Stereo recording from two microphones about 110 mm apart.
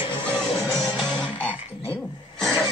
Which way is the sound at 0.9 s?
5° left (ahead or behind).